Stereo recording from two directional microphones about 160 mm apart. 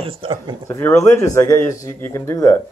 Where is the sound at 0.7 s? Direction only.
15° left (ahead or behind).